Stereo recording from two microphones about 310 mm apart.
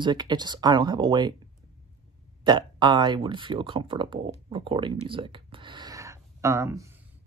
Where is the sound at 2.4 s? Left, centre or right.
Centre.